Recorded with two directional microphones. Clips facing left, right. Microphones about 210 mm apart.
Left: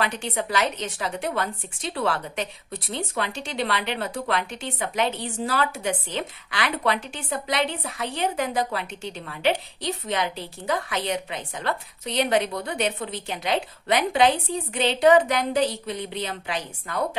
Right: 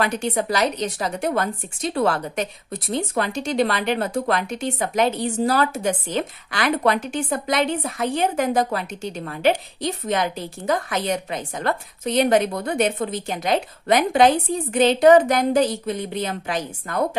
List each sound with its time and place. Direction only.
0.0 s a woman's voice: 45° right (ahead or behind)